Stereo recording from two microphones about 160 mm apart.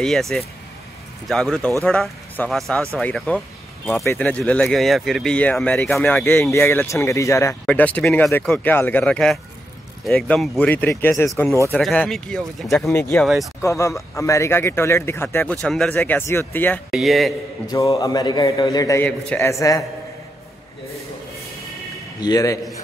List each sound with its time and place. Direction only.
0.0 s speech: centre (ahead or behind)
13.6 s speech: 20° left (ahead or behind)
15.6 s speech: 5° left (ahead or behind)
16.9 s speech: centre (ahead or behind)
17.6 s a man's voice: 20° left (ahead or behind)
19.0 s speech: 10° left (ahead or behind)
22.2 s a man's voice: 20° left (ahead or behind)